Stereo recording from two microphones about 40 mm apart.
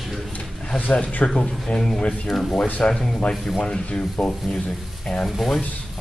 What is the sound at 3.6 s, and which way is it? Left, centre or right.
Speech, left.